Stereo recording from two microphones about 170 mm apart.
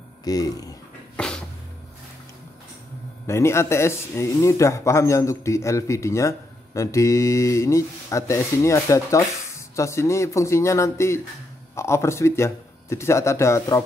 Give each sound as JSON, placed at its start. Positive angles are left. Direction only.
{"t": 0.2, "sound": "speech", "side_deg": 20}
{"t": 1.1, "sound": "a sound", "side_deg": 5}
{"t": 3.3, "sound": "speech", "side_deg": 15}